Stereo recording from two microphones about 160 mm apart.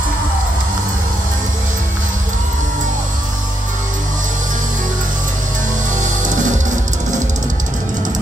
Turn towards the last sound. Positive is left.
turn(degrees=-50)  # may be behind; listen again after turning